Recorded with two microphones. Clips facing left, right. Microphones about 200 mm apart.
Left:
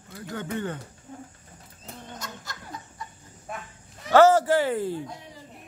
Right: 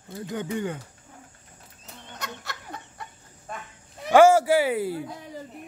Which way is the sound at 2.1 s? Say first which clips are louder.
Right 7 dB; 65° right (ahead or behind).